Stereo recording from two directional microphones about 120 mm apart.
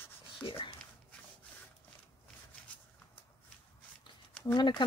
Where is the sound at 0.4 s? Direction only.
45° left (ahead or behind).